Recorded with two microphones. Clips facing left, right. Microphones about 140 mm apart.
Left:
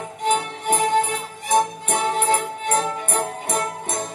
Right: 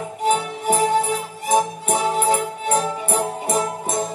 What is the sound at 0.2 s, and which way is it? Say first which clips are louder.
Music: right 2 dB; 40° right (ahead or behind).